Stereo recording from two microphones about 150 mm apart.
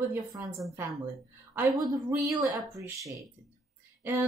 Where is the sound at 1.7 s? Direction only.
30° right (ahead or behind).